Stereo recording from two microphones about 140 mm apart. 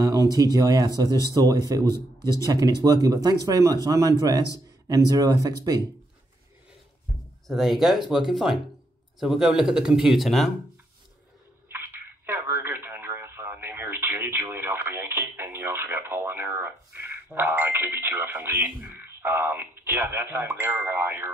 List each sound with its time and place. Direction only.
0.3 s speech: 25° right (ahead or behind)
7.4 s speech: centre (ahead or behind)
11.7 s a sound: 15° right (ahead or behind)
18.9 s speech: 15° right (ahead or behind)